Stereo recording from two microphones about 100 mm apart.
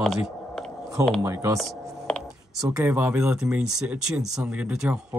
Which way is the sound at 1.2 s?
35° right (ahead or behind).